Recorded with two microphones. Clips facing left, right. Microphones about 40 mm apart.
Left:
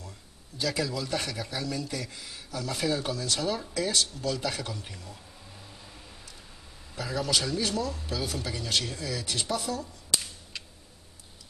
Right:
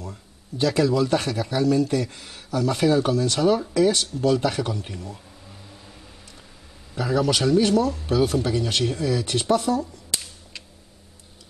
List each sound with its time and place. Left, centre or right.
0.0 s speech: right
7.0 s speech: right